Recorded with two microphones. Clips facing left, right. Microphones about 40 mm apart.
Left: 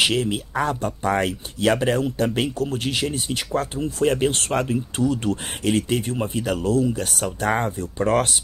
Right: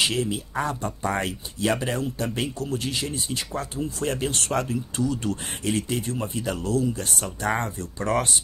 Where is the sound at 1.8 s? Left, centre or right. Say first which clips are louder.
Left 6 dB; left.